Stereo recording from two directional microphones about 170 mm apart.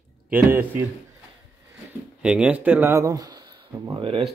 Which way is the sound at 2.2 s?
5° right (ahead or behind).